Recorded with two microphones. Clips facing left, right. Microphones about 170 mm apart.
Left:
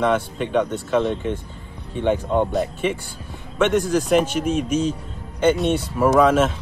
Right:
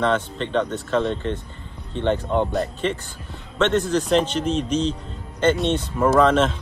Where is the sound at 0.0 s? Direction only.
10° left (ahead or behind).